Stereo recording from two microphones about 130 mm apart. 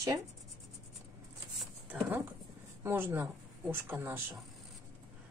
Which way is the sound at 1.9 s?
15° right (ahead or behind).